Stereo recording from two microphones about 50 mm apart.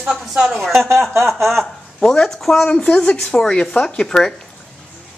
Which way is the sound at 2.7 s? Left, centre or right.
Left.